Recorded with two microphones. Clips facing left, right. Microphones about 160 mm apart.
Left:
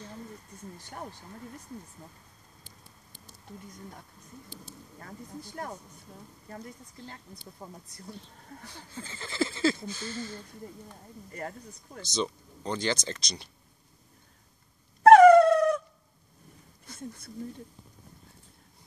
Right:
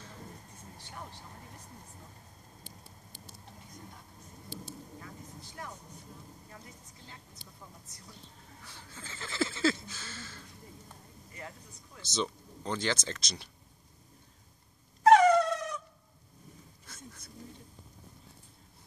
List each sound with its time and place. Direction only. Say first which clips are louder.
4.9 s speech: left 4 dB; 50° left (ahead or behind)
9.0 s speech: left 3 dB; centre (ahead or behind)
11.3 s speech: left 8 dB; 50° left (ahead or behind)
12.0 s speech: left 3 dB; 5° right (ahead or behind)
15.0 s dog: left 7 dB; 55° left (ahead or behind)